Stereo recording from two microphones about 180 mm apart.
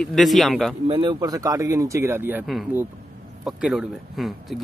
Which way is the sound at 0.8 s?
30° right (ahead or behind).